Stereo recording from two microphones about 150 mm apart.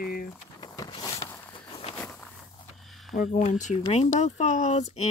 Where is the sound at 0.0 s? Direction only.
70° left (ahead or behind).